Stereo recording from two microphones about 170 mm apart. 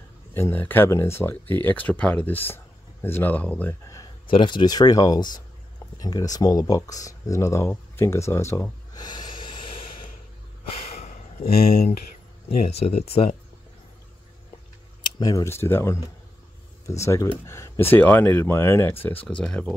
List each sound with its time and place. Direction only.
0.3 s speech: 10° left (ahead or behind)
4.3 s speech: 30° left (ahead or behind)
8.9 s snort: 25° left (ahead or behind)
10.8 s a sound: 45° left (ahead or behind); by 11.9 s 60° left (ahead or behind)
12.6 s speech: 35° left (ahead or behind)
15.0 s speech: 25° left (ahead or behind)
17.0 s speech: 15° left (ahead or behind)